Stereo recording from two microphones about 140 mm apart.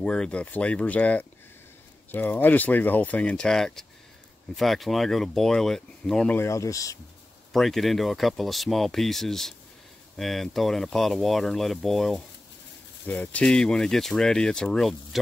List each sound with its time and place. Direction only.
0.0 s speech: 5° left (ahead or behind)
6.3 s speech: 20° left (ahead or behind)
7.5 s speech: centre (ahead or behind)